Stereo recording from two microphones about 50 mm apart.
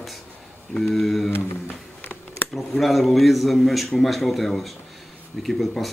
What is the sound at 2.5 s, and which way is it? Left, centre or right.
Speech, centre.